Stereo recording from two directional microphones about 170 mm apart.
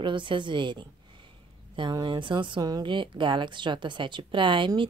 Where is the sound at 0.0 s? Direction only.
30° right (ahead or behind).